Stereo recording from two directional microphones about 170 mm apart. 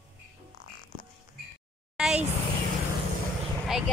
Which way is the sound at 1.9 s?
5° right (ahead or behind).